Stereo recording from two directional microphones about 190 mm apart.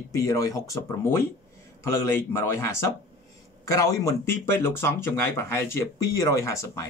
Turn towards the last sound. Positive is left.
turn(degrees=15)  # may be behind; listen again after turning